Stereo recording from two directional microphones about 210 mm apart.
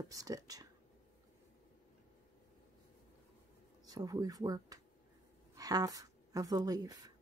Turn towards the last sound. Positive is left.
turn(degrees=-15)  # may be behind; listen again after turning